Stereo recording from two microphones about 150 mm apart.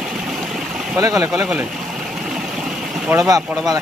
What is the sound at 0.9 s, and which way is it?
Speech, 20° right (ahead or behind).